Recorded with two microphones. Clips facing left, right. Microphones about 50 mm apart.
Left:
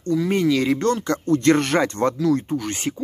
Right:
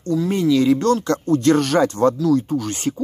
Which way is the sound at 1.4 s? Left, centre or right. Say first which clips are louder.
Right 2 dB; left.